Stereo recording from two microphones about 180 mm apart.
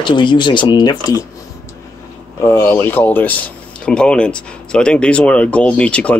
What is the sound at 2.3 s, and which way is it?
Speech, 15° left (ahead or behind).